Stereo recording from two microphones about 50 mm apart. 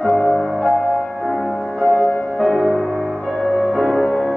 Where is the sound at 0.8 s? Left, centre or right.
Left.